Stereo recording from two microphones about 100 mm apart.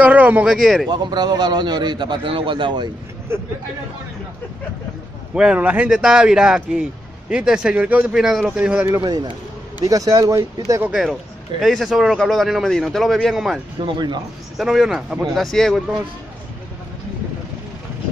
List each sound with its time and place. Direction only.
0.0 s speech: 15° right (ahead or behind)
0.8 s a man's voice: 45° right (ahead or behind)
3.3 s speech: 25° right (ahead or behind)
5.3 s speech: 10° right (ahead or behind)
9.0 s a man's voice: 45° right (ahead or behind)
10.8 s speech: 10° right (ahead or behind)
13.7 s a man's voice: 50° right (ahead or behind)
14.6 s speech: centre (ahead or behind)